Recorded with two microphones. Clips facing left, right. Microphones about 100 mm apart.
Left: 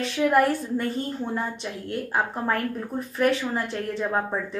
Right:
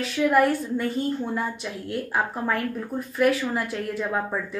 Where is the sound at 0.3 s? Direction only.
Centre (ahead or behind).